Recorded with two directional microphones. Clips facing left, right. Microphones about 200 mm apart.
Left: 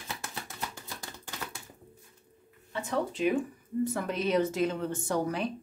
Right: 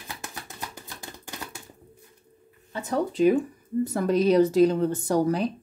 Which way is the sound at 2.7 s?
40° right (ahead or behind).